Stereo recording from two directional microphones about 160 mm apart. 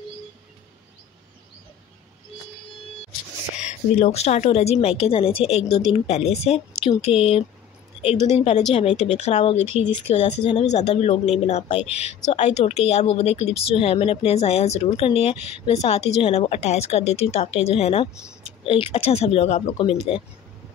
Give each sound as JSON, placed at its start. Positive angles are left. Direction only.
{"t": 3.9, "sound": "speech", "side_deg": 40}